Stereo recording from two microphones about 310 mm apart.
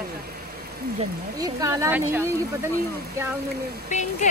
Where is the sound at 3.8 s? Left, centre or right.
Left.